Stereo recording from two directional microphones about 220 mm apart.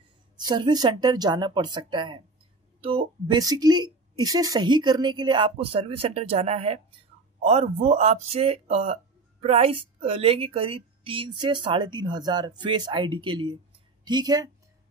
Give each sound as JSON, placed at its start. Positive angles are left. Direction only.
{"t": 0.4, "sound": "a woman's voice", "side_deg": -20}